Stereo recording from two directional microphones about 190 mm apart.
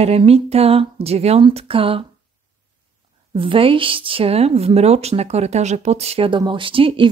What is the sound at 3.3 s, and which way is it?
Speech, 30° right (ahead or behind).